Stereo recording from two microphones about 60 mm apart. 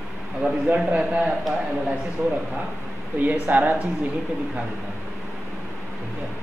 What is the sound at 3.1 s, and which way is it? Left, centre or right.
Speech, right.